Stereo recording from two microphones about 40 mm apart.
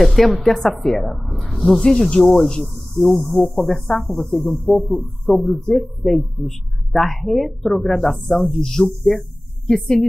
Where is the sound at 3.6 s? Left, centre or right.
Centre.